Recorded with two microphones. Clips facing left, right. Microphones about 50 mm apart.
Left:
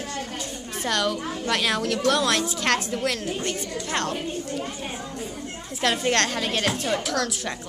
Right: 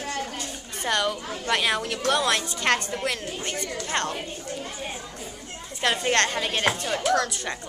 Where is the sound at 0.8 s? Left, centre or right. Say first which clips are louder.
Even; centre.